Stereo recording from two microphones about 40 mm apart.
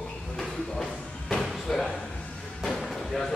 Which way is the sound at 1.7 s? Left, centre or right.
Centre.